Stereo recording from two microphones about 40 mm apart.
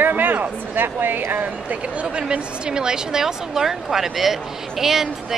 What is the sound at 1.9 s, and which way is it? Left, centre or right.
A woman's voice, right.